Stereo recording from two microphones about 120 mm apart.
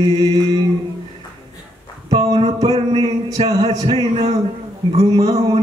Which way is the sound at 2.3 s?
55° right (ahead or behind).